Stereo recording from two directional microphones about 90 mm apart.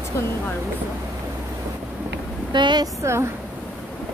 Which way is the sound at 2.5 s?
55° right (ahead or behind).